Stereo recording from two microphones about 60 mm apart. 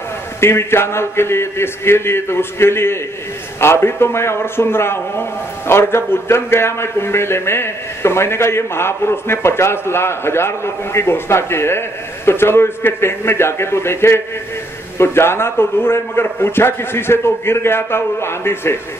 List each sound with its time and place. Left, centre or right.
0.4 s a man's voice: left